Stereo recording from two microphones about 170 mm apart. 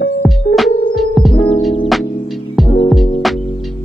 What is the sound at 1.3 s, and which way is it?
Music, 30° left (ahead or behind).